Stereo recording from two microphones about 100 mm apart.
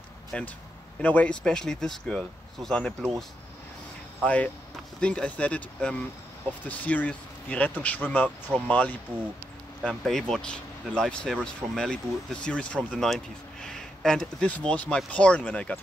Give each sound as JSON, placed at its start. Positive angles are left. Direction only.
{"t": 0.3, "sound": "speech", "side_deg": 10}
{"t": 4.2, "sound": "speech", "side_deg": 15}
{"t": 9.8, "sound": "speech", "side_deg": 5}